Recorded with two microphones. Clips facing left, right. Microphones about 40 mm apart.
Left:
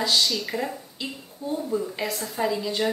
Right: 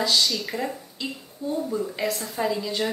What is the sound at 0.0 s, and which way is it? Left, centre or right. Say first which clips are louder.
Speech: even; centre.